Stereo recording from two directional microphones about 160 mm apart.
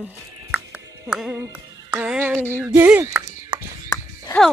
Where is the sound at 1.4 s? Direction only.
15° right (ahead or behind).